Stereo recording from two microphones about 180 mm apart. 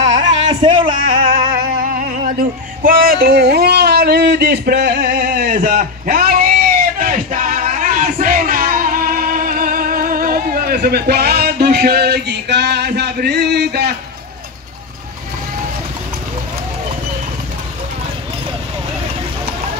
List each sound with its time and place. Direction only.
0.1 s a sound: 25° right (ahead or behind)
0.9 s music: 50° right (ahead or behind)
2.8 s speech: 50° right (ahead or behind)
7.0 s music: 45° right (ahead or behind); by 13.9 s 65° right (ahead or behind)